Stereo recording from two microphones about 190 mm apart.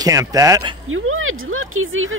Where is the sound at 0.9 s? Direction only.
90° right.